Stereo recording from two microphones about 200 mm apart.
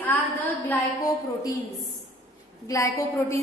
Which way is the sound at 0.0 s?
10° left (ahead or behind).